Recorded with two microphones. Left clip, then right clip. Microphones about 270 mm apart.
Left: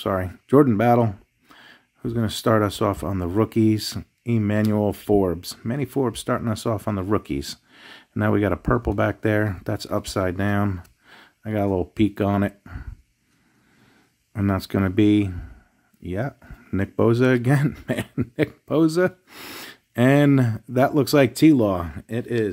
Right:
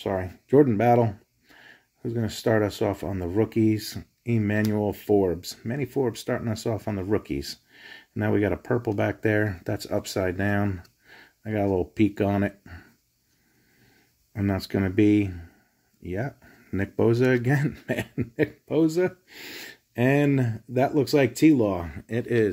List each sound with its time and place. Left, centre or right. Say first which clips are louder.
0.0 s speech: left 4 dB; left
14.3 s speech: left 3 dB; centre